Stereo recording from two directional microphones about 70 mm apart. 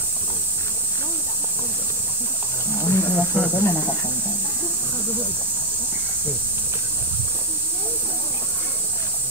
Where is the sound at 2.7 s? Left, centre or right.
Left.